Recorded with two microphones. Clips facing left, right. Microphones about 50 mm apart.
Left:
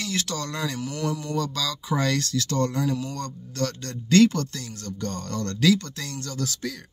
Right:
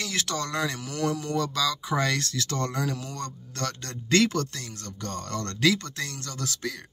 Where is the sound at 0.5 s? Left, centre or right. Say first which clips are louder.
Even; right.